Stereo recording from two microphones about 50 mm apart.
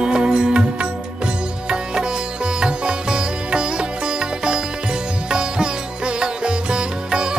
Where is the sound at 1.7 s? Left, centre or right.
Centre.